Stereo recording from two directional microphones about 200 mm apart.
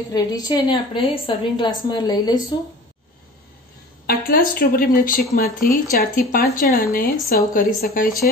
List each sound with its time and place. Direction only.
0.1 s a woman's voice: 20° left (ahead or behind)
4.0 s speech: 50° left (ahead or behind)